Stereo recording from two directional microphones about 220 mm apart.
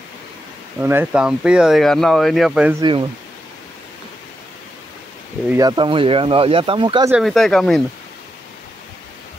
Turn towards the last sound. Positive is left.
turn(degrees=0)  # may be behind; listen again after turning